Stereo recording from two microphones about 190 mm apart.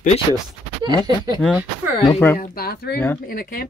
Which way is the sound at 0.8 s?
20° right (ahead or behind).